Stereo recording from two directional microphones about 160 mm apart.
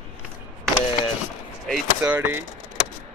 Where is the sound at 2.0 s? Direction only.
10° right (ahead or behind).